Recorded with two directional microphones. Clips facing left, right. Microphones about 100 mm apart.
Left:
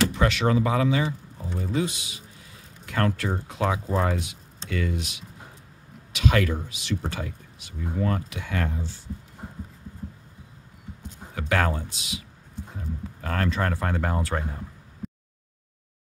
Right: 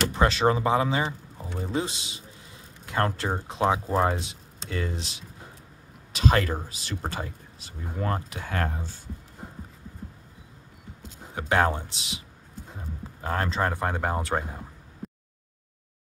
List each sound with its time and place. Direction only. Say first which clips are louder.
0.1 s speech: right 1 dB; 30° right (ahead or behind)
11.3 s speech: right 2 dB; 25° right (ahead or behind)
15.0 s a sound: left 2 dB; centre (ahead or behind)